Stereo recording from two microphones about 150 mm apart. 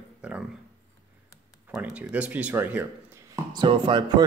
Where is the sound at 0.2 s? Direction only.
5° right (ahead or behind).